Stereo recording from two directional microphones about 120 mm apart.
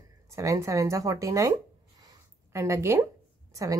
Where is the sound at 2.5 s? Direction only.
25° right (ahead or behind).